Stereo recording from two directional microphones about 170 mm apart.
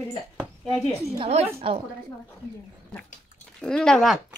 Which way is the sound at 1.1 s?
35° right (ahead or behind).